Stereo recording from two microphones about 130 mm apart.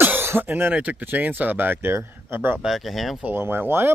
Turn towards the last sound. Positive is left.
turn(degrees=-15)  # may be behind; listen again after turning